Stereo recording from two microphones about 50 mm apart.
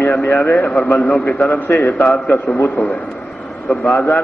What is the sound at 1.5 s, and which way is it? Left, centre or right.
A man's voice, left.